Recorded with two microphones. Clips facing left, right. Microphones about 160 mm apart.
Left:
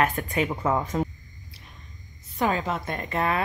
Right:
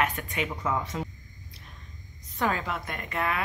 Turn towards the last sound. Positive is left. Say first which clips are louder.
# left 4 dB
turn(degrees=30)  # may be behind; listen again after turning